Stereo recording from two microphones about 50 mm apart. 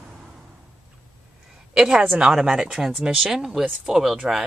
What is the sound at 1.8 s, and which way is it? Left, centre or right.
A woman's voice, centre.